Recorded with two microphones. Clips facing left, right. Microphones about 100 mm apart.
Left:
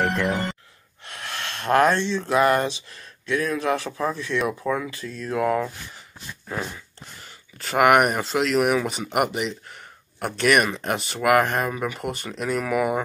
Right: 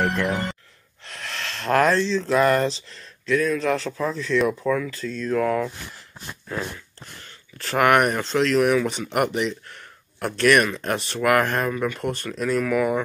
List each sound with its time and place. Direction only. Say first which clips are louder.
0.0 s speech: even; centre (ahead or behind)
4.6 s speech: right 2 dB; 20° left (ahead or behind)
4.9 s speech: right 3 dB; 5° left (ahead or behind)